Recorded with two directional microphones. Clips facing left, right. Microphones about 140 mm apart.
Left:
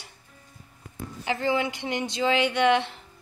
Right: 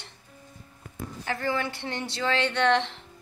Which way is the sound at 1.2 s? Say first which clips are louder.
Left 4 dB; 15° left (ahead or behind).